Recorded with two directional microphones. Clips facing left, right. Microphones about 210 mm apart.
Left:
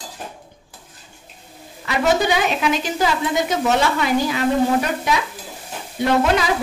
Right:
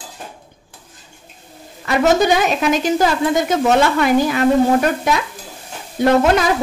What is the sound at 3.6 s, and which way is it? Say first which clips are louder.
Speech: right 6 dB; 55° right (ahead or behind).